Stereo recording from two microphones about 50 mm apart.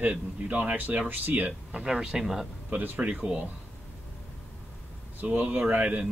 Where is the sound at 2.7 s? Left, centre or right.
Right.